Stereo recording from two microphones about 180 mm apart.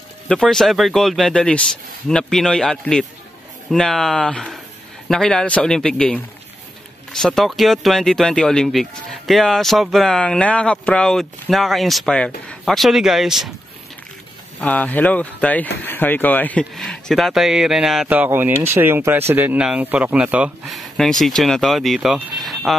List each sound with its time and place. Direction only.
0.3 s speech: 5° left (ahead or behind)
14.6 s speech: 10° left (ahead or behind)